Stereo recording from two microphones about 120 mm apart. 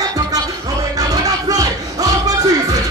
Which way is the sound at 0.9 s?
30° right (ahead or behind).